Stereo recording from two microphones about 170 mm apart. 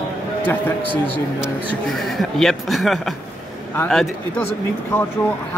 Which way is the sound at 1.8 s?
Centre (ahead or behind).